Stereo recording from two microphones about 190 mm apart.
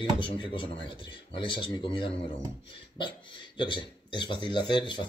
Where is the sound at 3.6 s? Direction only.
25° left (ahead or behind).